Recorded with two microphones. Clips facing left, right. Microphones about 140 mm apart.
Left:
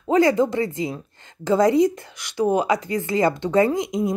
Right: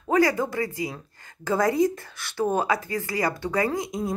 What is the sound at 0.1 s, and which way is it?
A woman's voice, 20° left (ahead or behind).